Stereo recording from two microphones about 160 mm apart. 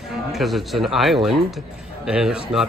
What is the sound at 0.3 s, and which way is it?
Speech, centre (ahead or behind).